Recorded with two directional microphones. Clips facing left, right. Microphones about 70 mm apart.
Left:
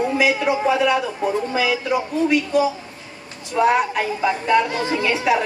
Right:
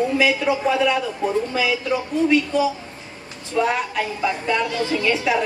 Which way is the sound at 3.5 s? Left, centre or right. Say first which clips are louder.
Left 4 dB; left.